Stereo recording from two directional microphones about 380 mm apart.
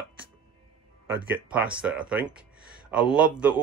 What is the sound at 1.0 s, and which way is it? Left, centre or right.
Speech, centre.